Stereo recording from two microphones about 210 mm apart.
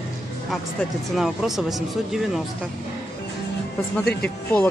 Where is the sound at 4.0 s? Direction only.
50° left (ahead or behind).